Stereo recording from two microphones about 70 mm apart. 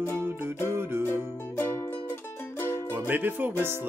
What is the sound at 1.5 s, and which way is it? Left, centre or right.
Music, left.